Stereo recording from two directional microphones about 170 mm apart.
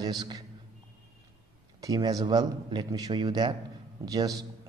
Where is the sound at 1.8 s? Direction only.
20° right (ahead or behind).